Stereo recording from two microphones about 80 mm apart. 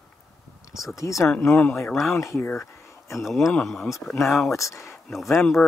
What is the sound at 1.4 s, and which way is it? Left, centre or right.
Speech, left.